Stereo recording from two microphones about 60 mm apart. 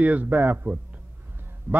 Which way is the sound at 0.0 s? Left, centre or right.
Right.